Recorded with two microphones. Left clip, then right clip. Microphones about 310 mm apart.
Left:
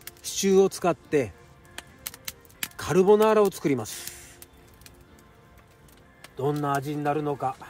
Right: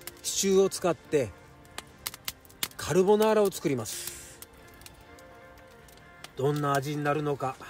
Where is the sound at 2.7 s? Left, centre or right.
Left.